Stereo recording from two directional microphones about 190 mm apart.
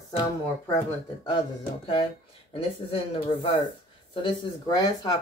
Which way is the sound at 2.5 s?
25° left (ahead or behind).